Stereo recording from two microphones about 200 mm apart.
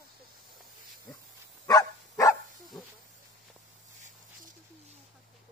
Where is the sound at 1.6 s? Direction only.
15° left (ahead or behind).